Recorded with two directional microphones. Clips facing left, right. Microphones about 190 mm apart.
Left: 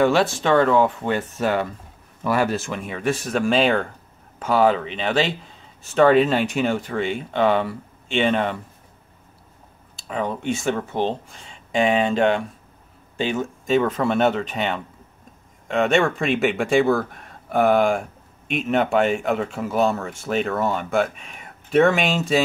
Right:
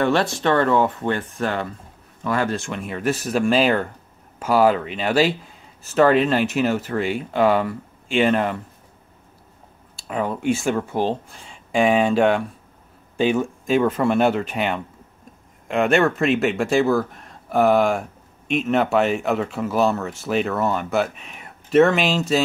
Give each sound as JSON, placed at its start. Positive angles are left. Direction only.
{"t": 0.0, "sound": "speech", "side_deg": 5}
{"t": 10.0, "sound": "speech", "side_deg": -5}